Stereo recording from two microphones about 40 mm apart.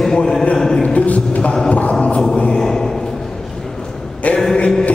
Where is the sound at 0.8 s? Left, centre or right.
Left; by 2.7 s centre.